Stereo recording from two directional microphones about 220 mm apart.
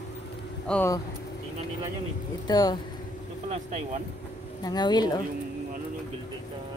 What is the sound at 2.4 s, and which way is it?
Speech, 20° left (ahead or behind).